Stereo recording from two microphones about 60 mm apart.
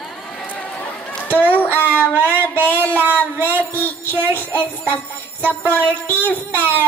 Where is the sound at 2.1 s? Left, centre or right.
Right.